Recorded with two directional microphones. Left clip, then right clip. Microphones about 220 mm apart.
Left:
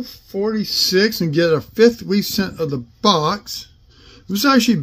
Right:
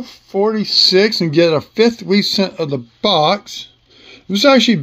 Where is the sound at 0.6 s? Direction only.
65° left (ahead or behind).